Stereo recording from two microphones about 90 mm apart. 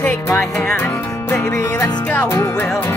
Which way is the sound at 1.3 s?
35° left (ahead or behind).